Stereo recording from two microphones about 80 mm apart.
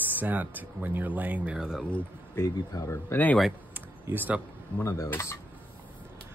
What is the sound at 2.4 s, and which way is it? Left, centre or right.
Speech, left.